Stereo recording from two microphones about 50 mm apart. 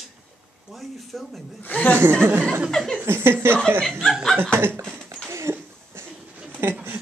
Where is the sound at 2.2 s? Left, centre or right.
Right.